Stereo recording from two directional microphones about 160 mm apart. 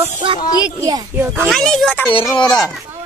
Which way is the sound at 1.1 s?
15° right (ahead or behind).